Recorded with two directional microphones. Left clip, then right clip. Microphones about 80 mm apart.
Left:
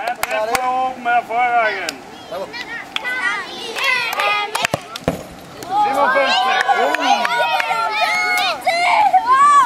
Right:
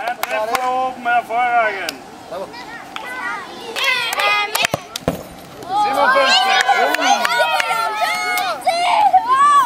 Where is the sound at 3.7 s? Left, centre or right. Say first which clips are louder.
Even; centre.